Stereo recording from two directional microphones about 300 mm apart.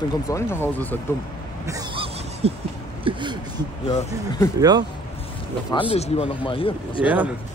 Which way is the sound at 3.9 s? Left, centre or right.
Centre.